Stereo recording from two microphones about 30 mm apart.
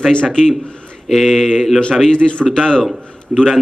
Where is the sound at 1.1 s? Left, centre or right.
Centre.